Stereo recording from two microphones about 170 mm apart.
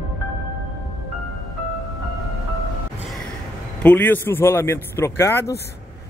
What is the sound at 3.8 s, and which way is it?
A man's voice, 10° left (ahead or behind).